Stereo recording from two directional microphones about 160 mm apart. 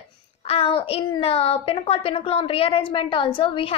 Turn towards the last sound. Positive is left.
turn(degrees=35)  # may be behind; listen again after turning